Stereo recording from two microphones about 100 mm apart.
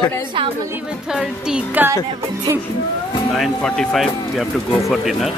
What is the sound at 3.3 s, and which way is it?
Speech, 5° left (ahead or behind).